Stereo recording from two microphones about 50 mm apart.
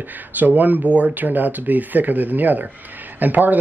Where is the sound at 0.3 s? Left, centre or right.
Right.